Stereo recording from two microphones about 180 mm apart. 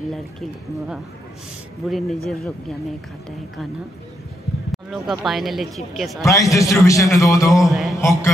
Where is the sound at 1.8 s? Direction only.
Centre (ahead or behind).